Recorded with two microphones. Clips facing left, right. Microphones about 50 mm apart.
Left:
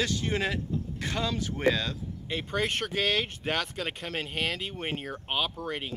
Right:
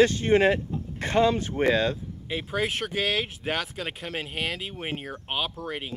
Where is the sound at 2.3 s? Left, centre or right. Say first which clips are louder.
Right 2 dB; centre.